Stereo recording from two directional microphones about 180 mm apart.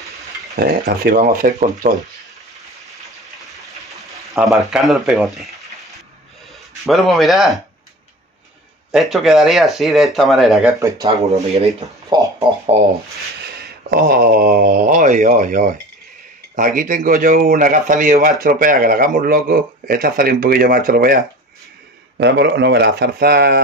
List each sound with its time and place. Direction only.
0.6 s speech: 55° right (ahead or behind)
3.4 s a sound: centre (ahead or behind)
4.6 s speech: centre (ahead or behind)
8.9 s speech: centre (ahead or behind)
11.2 s speech: 35° right (ahead or behind)
12.1 s a sound: 25° right (ahead or behind)
13.8 s speech: 55° right (ahead or behind)
22.1 s speech: 70° right (ahead or behind)